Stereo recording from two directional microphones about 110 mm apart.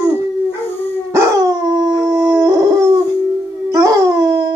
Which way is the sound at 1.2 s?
35° right (ahead or behind).